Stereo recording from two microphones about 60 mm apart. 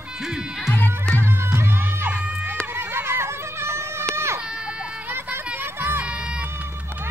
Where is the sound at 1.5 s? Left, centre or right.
Right.